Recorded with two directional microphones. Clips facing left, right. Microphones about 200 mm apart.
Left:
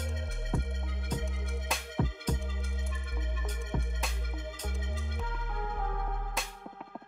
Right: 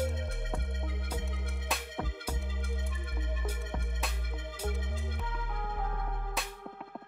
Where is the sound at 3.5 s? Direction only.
5° right (ahead or behind).